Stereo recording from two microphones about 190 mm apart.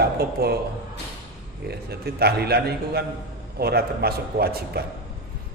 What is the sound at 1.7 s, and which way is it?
A man's voice, 55° right (ahead or behind).